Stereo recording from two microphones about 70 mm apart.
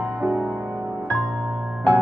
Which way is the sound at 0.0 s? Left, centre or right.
Right.